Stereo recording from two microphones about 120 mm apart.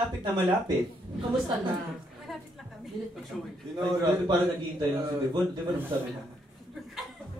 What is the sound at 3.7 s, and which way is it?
Speech, 40° right (ahead or behind).